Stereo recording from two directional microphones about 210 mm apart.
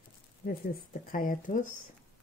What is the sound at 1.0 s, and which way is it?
Speech, 40° left (ahead or behind).